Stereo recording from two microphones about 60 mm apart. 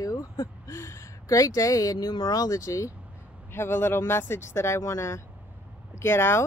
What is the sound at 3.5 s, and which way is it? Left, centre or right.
Speech, left.